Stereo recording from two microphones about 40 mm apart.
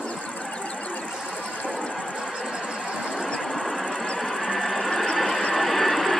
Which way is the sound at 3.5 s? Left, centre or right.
Centre.